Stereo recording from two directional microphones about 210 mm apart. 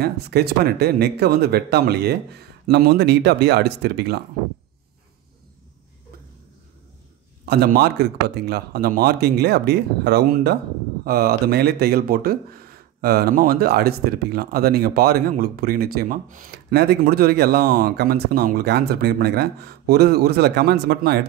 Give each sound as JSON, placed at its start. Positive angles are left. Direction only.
{"t": 0.0, "sound": "speech", "side_deg": -50}
{"t": 7.4, "sound": "speech", "side_deg": -50}